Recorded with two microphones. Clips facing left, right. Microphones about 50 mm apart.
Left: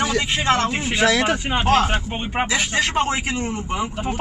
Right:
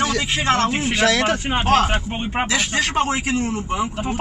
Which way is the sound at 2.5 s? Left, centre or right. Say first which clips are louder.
Even; centre.